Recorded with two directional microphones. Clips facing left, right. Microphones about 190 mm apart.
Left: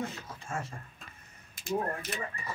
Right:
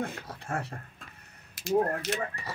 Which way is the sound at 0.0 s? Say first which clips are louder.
Right 3 dB; 60° right (ahead or behind).